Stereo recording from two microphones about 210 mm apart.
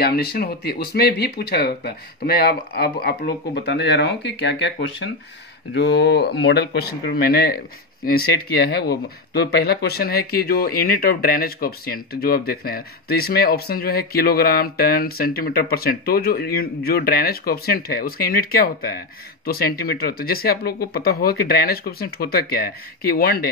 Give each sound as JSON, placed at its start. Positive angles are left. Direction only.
{"t": 0.0, "sound": "speech", "side_deg": 50}